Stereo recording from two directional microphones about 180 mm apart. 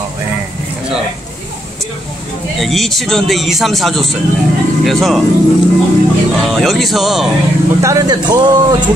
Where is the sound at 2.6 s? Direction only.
Centre (ahead or behind).